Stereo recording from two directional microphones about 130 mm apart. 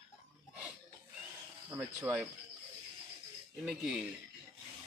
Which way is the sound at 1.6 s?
10° right (ahead or behind).